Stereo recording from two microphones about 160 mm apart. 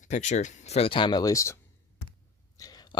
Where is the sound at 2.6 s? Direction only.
25° left (ahead or behind).